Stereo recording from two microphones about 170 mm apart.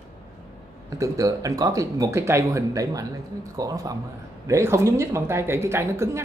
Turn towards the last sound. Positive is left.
turn(degrees=-15)  # may be behind; listen again after turning